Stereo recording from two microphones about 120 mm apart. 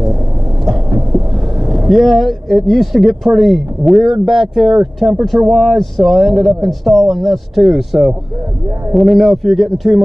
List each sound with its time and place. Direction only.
0.7 s speech: 5° right (ahead or behind)